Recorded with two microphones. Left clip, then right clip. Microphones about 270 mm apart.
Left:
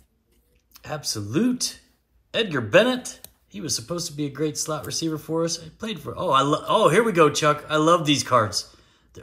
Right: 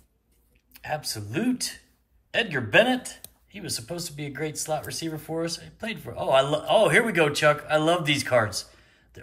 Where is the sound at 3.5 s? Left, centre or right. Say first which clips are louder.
Left 5 dB; centre.